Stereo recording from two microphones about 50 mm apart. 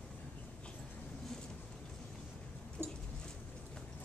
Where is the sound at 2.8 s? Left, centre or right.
Right.